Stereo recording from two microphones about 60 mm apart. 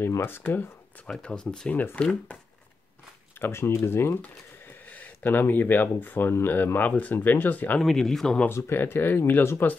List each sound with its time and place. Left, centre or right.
0.4 s speech: left
1.2 s speech: centre
1.7 s speech: left
3.3 s speech: left
4.8 s speech: left
7.8 s speech: centre
8.5 s speech: left